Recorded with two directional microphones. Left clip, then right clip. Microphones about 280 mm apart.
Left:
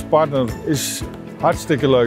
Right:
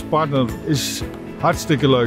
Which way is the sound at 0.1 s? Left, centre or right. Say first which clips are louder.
Left 3 dB; right.